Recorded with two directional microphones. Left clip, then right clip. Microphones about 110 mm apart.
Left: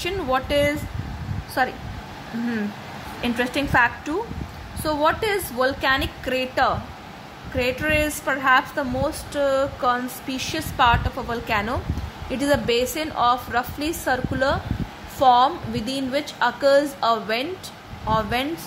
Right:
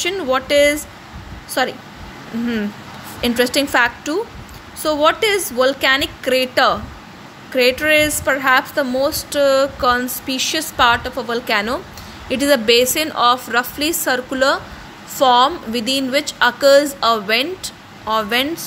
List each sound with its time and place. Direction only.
0.0 s a woman's voice: 10° right (ahead or behind)
3.2 s a woman's voice: 20° right (ahead or behind)